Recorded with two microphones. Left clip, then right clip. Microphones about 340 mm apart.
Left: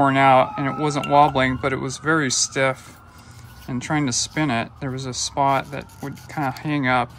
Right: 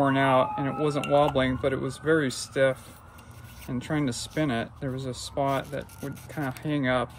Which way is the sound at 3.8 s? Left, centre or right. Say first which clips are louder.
Left 8 dB; centre.